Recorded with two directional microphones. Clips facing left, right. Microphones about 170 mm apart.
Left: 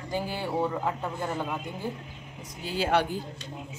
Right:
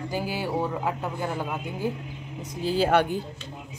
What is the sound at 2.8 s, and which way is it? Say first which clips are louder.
Speech: right 4 dB; 50° right (ahead or behind).